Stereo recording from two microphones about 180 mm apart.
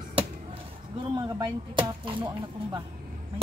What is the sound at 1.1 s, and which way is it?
Speech, 25° right (ahead or behind).